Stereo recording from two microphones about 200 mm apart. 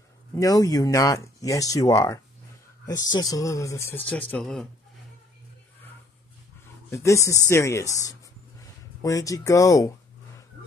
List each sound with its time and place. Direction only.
0.3 s speech: 15° left (ahead or behind)
6.9 s speech: 15° left (ahead or behind)